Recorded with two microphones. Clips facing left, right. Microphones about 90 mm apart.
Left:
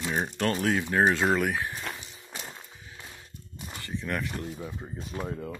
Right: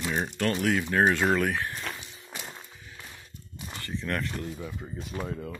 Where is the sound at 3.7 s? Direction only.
10° left (ahead or behind).